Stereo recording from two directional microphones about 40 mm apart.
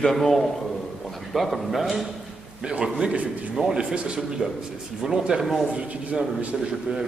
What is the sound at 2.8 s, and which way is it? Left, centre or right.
A man's voice, right.